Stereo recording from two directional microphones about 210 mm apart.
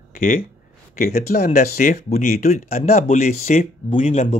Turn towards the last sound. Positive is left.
turn(degrees=35)  # may be behind; listen again after turning